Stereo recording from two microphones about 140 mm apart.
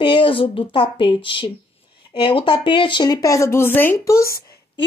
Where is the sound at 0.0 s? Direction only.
35° left (ahead or behind); by 4.2 s 20° left (ahead or behind).